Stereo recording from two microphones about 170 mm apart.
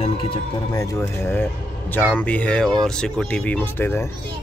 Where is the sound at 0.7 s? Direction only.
20° left (ahead or behind).